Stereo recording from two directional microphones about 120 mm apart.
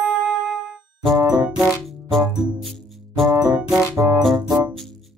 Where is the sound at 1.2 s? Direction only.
30° right (ahead or behind).